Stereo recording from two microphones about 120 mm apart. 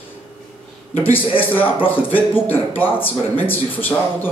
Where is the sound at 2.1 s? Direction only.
15° left (ahead or behind).